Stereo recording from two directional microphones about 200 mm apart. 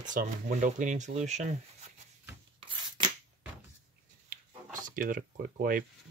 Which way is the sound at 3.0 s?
25° right (ahead or behind).